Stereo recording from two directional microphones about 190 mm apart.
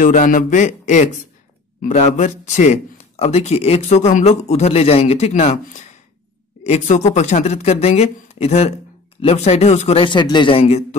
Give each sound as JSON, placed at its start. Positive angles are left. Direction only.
{"t": 0.0, "sound": "speech", "side_deg": 45}